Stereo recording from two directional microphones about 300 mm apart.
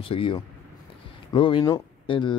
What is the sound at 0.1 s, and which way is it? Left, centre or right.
Speech, centre.